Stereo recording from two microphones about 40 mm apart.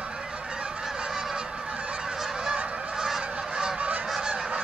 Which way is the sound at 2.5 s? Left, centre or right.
Right.